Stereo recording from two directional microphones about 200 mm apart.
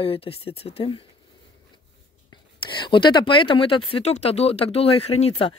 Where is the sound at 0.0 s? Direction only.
30° left (ahead or behind).